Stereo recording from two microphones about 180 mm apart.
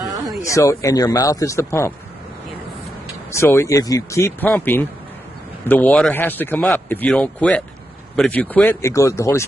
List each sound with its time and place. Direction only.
0.0 s a sound: 20° right (ahead or behind)
0.4 s speech: 15° left (ahead or behind)
3.3 s speech: 15° left (ahead or behind)